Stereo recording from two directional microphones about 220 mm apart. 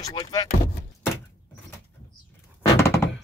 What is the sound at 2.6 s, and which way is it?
Thunk, 10° left (ahead or behind).